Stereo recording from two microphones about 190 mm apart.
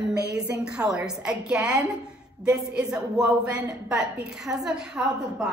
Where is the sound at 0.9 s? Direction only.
5° right (ahead or behind).